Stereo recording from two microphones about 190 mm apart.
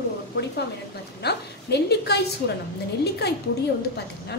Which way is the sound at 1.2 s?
60° left (ahead or behind).